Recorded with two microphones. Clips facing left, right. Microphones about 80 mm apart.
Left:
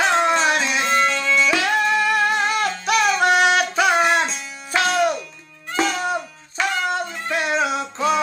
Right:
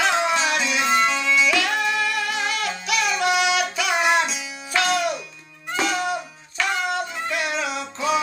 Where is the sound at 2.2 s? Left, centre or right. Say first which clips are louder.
Left 5 dB; left.